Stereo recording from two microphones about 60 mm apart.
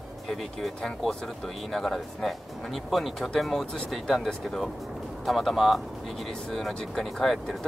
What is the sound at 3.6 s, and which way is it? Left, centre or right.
Speech, centre.